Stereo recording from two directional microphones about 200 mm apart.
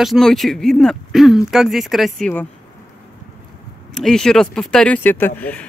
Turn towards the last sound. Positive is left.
turn(degrees=10)  # may be behind; listen again after turning